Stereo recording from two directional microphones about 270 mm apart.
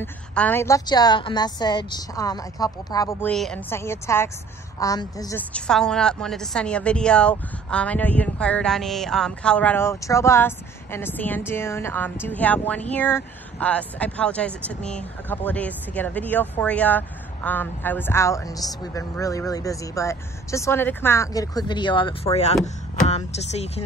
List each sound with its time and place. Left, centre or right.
0.0 s a woman's voice: centre; by 23.8 s left